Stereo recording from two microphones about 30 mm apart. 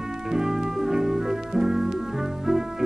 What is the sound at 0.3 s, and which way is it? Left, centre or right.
Brass instrument, centre.